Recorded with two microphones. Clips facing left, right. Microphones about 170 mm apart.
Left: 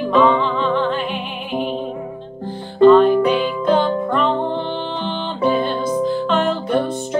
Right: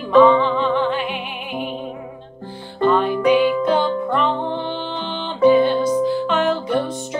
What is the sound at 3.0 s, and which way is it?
Music, 10° right (ahead or behind).